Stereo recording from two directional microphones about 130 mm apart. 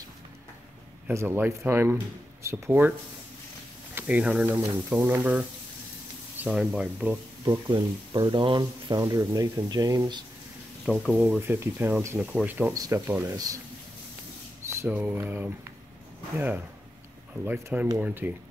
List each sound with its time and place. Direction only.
1.0 s speech: 15° right (ahead or behind)
3.9 s speech: 10° right (ahead or behind)
4.5 s speech: 25° right (ahead or behind)
4.8 s speech: 15° right (ahead or behind)
7.4 s speech: 35° right (ahead or behind)
10.9 s speech: 5° left (ahead or behind)
11.1 s speech: 15° right (ahead or behind)
12.2 s speech: 10° right (ahead or behind)
12.7 s speech: 25° right (ahead or behind)
14.6 s a sound: 20° right (ahead or behind)
14.9 s speech: 10° right (ahead or behind)